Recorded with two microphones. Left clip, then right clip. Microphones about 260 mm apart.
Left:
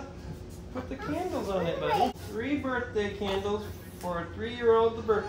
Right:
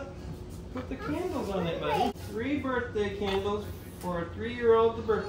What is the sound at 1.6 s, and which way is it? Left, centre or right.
Speech, centre.